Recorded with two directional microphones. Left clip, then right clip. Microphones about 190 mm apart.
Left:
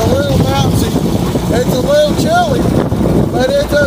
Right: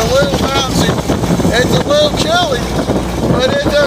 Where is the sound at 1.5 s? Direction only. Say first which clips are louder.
Left 1 dB; 20° left (ahead or behind).